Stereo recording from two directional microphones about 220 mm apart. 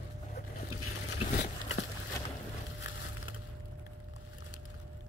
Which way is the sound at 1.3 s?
50° left (ahead or behind).